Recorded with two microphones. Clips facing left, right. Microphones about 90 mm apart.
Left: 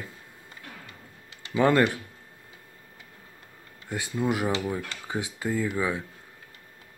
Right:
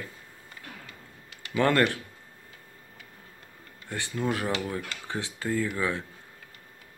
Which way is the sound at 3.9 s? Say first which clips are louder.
Left 2 dB; 10° left (ahead or behind).